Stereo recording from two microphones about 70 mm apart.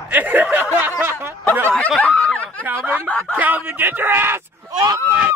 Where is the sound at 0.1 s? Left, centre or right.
Right.